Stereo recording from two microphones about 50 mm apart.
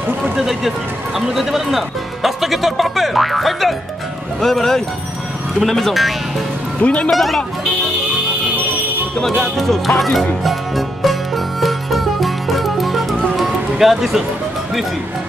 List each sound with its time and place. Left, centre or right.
0.2 s speech: centre
6.8 s speech: left
7.1 s speech: centre
9.2 s speech: centre
10.4 s music: centre